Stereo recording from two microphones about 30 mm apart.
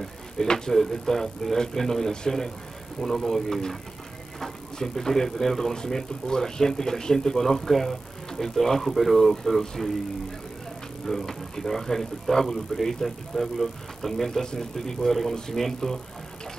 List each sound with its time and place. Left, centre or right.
0.0 s a sound: centre
0.7 s speech: centre
4.7 s speech: centre
11.1 s speech: centre